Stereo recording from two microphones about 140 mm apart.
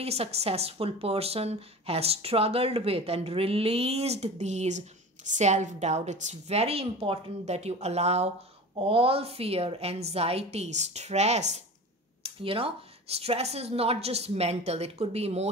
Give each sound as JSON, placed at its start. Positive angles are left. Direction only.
{"t": 0.0, "sound": "speech", "side_deg": -45}
{"t": 12.2, "sound": "speech", "side_deg": -40}